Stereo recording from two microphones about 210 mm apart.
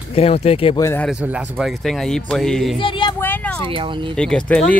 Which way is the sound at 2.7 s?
25° left (ahead or behind).